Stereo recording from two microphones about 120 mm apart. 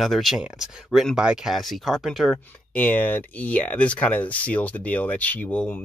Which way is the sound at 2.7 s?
15° left (ahead or behind).